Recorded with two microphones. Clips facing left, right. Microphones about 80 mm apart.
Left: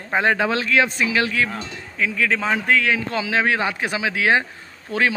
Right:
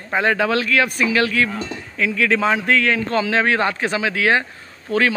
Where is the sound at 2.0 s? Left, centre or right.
Centre.